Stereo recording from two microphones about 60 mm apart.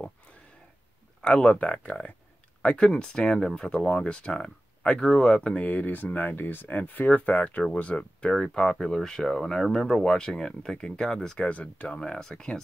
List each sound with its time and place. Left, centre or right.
1.2 s speech: centre
5.6 s speech: left
8.3 s speech: centre
11.4 s speech: left